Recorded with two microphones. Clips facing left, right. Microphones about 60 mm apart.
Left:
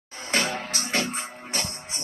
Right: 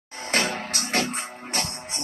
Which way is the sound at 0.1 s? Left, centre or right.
Right.